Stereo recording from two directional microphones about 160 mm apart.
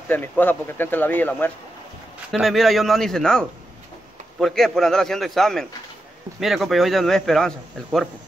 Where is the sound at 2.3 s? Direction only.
Centre (ahead or behind).